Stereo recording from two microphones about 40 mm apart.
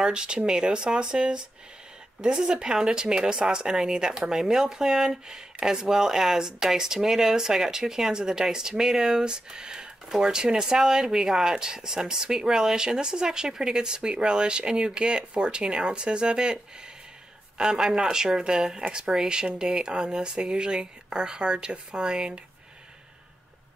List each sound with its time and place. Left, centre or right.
0.0 s speech: right
17.6 s speech: centre